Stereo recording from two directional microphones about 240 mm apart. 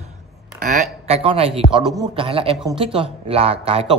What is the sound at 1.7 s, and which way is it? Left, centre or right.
Speech, centre.